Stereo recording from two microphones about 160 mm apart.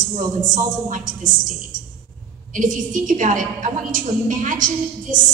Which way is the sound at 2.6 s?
55° right (ahead or behind).